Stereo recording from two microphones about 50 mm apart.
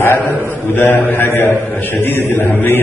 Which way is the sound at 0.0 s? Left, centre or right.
Left.